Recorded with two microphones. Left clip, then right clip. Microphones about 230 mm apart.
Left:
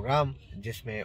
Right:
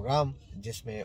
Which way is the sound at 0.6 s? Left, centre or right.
Centre.